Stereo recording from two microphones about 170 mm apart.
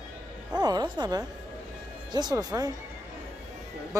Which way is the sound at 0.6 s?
25° right (ahead or behind).